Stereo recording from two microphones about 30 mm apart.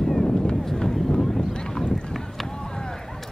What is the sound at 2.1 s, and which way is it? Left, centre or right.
Run, centre.